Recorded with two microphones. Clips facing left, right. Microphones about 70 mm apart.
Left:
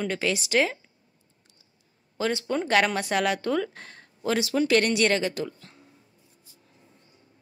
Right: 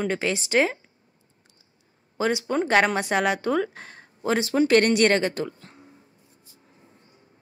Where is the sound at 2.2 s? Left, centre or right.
Centre.